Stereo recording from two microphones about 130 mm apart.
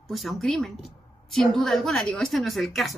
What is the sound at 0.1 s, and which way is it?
A woman's voice, centre (ahead or behind).